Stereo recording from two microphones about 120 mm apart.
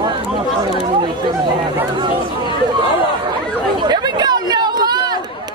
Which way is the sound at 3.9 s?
35° right (ahead or behind).